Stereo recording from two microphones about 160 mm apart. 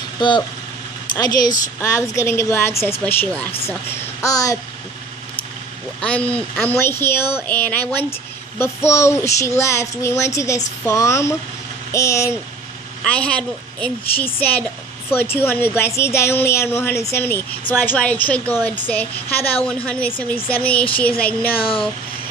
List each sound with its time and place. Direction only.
1.1 s speech: 25° left (ahead or behind)
5.9 s speech: 10° left (ahead or behind)
13.0 s speech: 5° left (ahead or behind)